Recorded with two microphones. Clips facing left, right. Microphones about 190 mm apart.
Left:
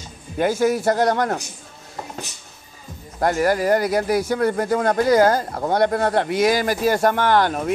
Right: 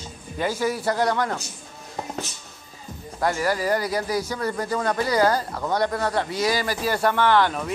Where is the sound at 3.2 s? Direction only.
50° left (ahead or behind).